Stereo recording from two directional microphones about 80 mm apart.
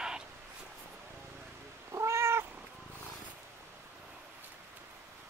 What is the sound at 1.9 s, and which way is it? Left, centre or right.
Cat, right.